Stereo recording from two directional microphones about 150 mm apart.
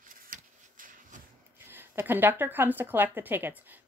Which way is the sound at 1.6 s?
15° right (ahead or behind).